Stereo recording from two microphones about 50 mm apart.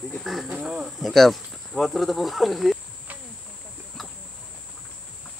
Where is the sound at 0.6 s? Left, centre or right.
Centre.